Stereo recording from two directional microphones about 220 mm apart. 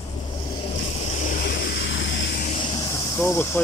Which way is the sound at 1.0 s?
35° left (ahead or behind).